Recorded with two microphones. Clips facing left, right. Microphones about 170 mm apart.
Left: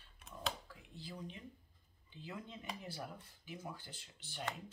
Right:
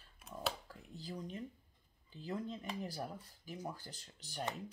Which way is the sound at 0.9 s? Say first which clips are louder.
Right 4 dB; 40° right (ahead or behind).